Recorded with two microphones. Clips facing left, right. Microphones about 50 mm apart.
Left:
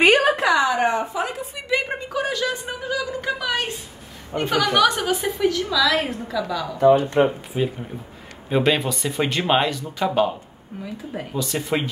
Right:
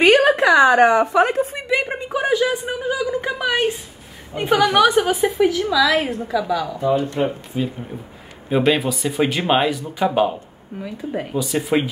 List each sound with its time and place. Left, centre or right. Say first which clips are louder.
0.0 s a sound: right 3 dB; centre
0.7 s a woman's voice: right 8 dB; right
1.2 s a woman's voice: right 9 dB; right
1.7 s a woman's voice: left 2 dB; centre
2.0 s a woman's voice: right 5 dB; right
4.3 s a woman's voice: left 1 dB; left
4.7 s a woman's voice: right 4 dB; centre
7.2 s speech: left 1 dB; centre
8.5 s a woman's voice: right 2 dB; centre